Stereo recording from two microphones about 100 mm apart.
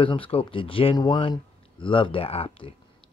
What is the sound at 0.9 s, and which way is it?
Speech, 50° left (ahead or behind).